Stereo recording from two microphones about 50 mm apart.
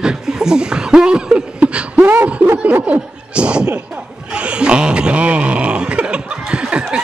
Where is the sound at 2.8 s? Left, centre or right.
Right.